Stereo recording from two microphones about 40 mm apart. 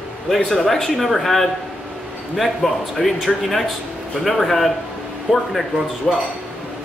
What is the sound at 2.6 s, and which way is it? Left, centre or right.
A man's voice, centre.